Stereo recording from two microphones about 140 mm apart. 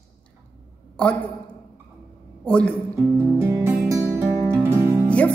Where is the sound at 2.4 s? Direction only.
5° left (ahead or behind).